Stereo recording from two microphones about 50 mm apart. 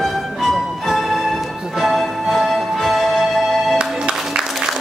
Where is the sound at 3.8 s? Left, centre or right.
Centre.